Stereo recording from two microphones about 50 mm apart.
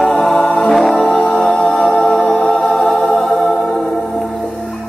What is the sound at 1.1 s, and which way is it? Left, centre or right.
Music, centre.